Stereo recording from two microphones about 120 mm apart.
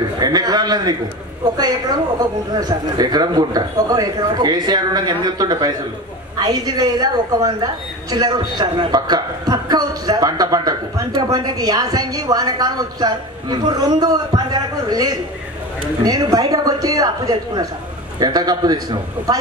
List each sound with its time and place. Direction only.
0.2 s a man's voice: 35° right (ahead or behind)
2.5 s a woman's voice: 35° right (ahead or behind)